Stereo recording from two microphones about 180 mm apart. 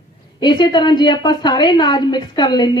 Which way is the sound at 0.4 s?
25° left (ahead or behind).